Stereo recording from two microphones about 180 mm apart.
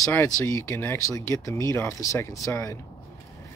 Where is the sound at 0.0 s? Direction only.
10° left (ahead or behind).